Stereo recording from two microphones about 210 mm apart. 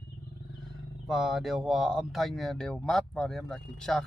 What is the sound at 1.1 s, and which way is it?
Speech, centre (ahead or behind).